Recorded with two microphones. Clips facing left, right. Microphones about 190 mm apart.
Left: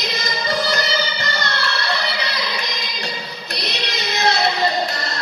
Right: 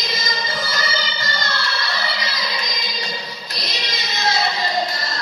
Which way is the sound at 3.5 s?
65° left (ahead or behind).